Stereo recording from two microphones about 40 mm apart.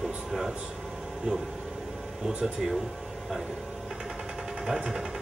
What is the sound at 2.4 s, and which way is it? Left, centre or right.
Sewing machine, centre.